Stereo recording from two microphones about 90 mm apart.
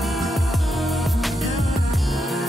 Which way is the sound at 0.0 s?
Centre (ahead or behind).